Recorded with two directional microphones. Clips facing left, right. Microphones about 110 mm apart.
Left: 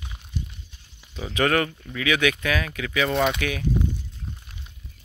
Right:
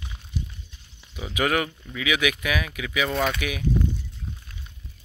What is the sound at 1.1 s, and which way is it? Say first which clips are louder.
Speech: left 2 dB; 10° right (ahead or behind).